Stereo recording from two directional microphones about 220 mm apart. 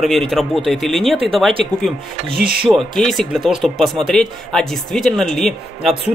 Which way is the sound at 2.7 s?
Centre (ahead or behind).